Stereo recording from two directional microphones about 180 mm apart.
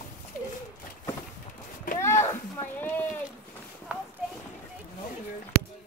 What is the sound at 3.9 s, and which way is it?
Clip-clop, 10° right (ahead or behind).